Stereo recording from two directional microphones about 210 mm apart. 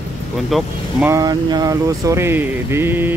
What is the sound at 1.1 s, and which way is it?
Speech, 20° right (ahead or behind).